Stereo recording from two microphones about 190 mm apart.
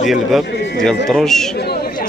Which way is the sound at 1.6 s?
60° left (ahead or behind).